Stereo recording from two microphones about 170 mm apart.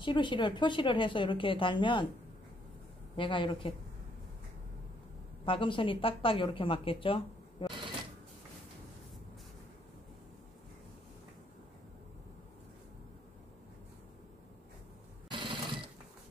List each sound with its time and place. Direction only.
0.0 s speech: 30° left (ahead or behind)
3.2 s speech: 30° left (ahead or behind)
5.4 s speech: 30° left (ahead or behind)
15.2 s a sound: 30° right (ahead or behind)